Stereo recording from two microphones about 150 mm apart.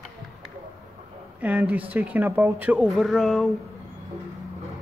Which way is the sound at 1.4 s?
10° right (ahead or behind).